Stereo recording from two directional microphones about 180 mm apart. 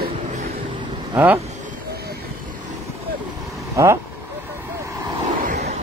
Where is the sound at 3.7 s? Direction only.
15° right (ahead or behind).